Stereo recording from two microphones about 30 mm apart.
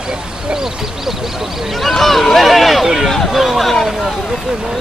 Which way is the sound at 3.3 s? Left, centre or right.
Centre.